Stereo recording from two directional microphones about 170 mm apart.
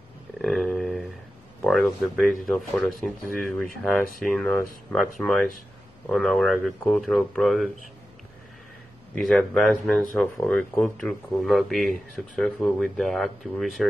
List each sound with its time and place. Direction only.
0.4 s a sound: 5° left (ahead or behind)
1.6 s speech: 5° left (ahead or behind)
4.2 s speech: 5° left (ahead or behind)
9.1 s speech: 5° left (ahead or behind)